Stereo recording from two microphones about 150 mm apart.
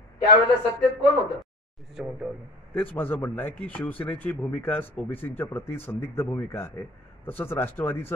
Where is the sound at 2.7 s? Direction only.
10° left (ahead or behind).